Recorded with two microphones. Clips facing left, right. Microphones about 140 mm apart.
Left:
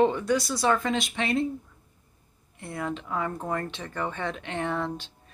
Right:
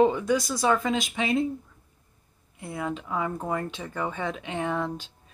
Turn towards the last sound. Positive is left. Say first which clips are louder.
# right 1 dB
turn(degrees=-5)  # may be behind; listen again after turning